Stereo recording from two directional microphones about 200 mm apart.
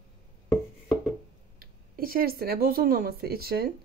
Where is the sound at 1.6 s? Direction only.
45° right (ahead or behind).